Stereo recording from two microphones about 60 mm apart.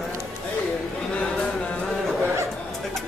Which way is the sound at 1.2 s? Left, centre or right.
Centre.